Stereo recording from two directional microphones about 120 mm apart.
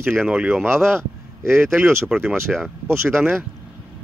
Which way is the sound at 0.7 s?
20° right (ahead or behind).